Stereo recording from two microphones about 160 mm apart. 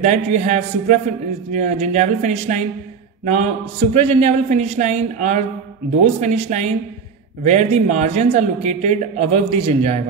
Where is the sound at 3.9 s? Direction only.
40° right (ahead or behind).